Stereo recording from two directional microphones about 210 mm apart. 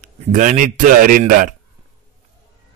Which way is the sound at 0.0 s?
35° right (ahead or behind).